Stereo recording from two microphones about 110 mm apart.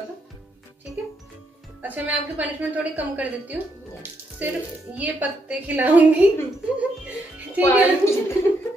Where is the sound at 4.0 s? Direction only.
15° right (ahead or behind).